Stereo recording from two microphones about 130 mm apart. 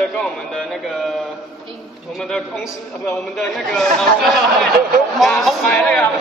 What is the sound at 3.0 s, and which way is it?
A man's voice, 5° left (ahead or behind).